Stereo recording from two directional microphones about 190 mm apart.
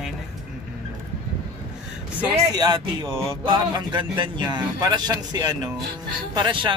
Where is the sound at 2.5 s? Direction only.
20° right (ahead or behind).